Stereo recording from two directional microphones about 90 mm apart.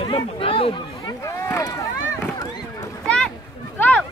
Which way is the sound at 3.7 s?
20° left (ahead or behind).